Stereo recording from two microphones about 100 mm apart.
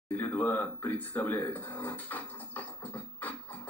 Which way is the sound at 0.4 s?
20° left (ahead or behind).